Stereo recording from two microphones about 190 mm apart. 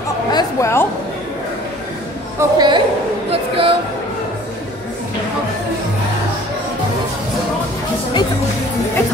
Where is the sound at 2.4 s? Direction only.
20° right (ahead or behind).